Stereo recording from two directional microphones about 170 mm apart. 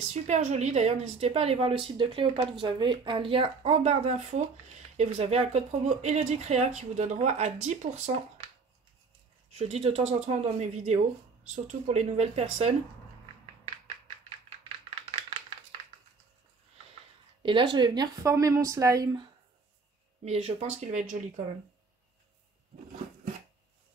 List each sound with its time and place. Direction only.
0.1 s speech: 45° right (ahead or behind)
9.6 s speech: 35° right (ahead or behind)
17.4 s speech: 30° right (ahead or behind)
20.2 s speech: 35° right (ahead or behind)